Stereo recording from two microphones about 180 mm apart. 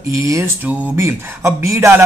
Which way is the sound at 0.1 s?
20° right (ahead or behind).